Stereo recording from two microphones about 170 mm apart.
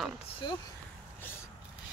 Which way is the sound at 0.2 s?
30° left (ahead or behind).